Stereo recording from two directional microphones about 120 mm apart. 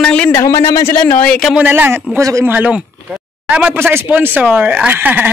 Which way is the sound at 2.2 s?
25° right (ahead or behind).